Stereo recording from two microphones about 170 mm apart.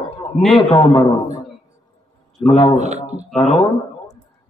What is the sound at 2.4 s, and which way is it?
Speech, 30° left (ahead or behind).